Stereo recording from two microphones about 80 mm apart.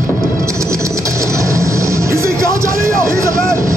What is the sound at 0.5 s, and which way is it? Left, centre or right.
Vehicle, right.